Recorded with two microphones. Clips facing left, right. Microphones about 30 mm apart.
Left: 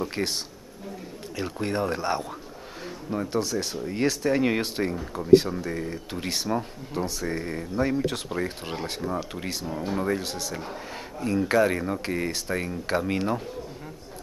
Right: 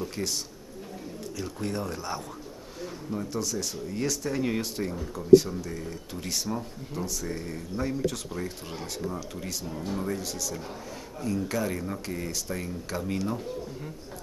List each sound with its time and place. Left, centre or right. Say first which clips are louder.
0.1 s speech: left 4 dB; left
1.4 s speech: left 6 dB; left